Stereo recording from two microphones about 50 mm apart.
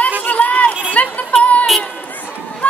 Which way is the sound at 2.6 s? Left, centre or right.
Left.